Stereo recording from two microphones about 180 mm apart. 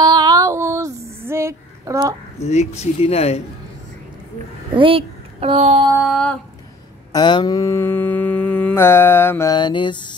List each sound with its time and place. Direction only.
0.0 s child singing: 20° right (ahead or behind)
1.2 s a sound: 15° right (ahead or behind)
2.4 s speech: 40° left (ahead or behind)
4.7 s speech: 30° right (ahead or behind)
6.0 s a sound: 5° left (ahead or behind)
7.1 s mantra: 25° left (ahead or behind)